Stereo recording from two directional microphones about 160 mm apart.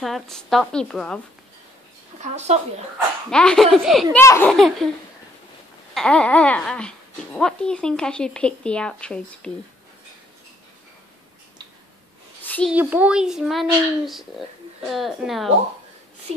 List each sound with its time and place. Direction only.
0.0 s speech: centre (ahead or behind)
2.1 s speech: 45° right (ahead or behind)
3.3 s speech: 5° left (ahead or behind)
4.2 s speech: 15° left (ahead or behind)
4.5 s speech: centre (ahead or behind)
5.9 s speech: 5° left (ahead or behind)
12.4 s a sound: 10° left (ahead or behind)
12.7 s speech: 10° right (ahead or behind)